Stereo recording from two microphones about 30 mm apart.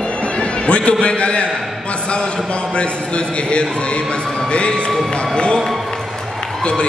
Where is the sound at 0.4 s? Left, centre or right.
Left.